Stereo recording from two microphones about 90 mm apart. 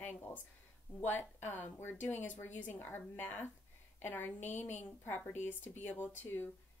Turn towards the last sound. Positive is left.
turn(degrees=20)  # may be behind; listen again after turning